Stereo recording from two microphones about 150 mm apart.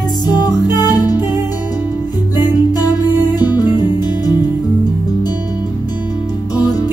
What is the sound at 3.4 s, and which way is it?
Music, 25° left (ahead or behind).